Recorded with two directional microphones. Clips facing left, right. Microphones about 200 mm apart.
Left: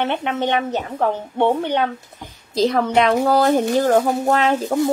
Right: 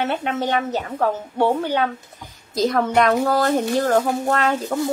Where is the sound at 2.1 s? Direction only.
25° left (ahead or behind).